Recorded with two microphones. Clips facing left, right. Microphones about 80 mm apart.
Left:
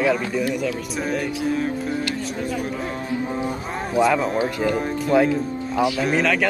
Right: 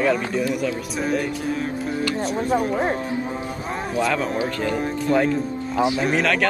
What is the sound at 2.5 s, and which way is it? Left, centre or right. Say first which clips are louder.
Speech: right 6 dB; right.